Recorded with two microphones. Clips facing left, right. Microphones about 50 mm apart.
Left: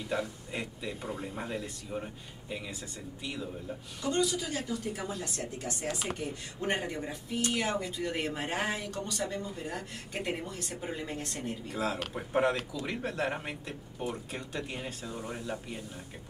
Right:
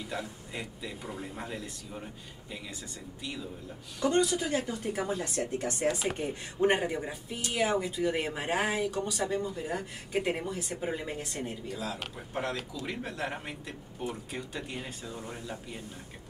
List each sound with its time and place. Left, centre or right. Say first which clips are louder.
0.6 s speech: left 2 dB; centre
4.0 s a woman's voice: right 4 dB; right
6.6 s speech: right 6 dB; centre
11.7 s speech: left 7 dB; left
12.3 s speech: left 7 dB; left
12.8 s speech: left 3 dB; centre